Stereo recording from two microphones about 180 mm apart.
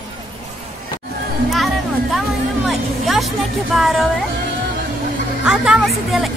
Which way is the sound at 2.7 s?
Centre (ahead or behind).